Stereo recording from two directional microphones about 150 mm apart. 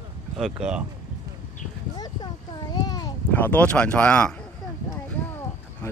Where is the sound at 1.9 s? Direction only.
25° left (ahead or behind).